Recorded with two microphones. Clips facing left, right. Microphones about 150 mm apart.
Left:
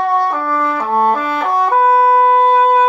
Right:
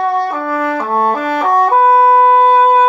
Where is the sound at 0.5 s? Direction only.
75° right (ahead or behind).